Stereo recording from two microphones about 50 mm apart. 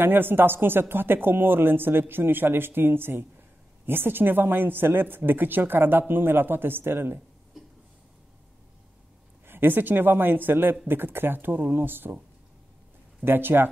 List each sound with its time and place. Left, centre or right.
0.0 s speech: right
9.5 s speech: right
13.2 s speech: right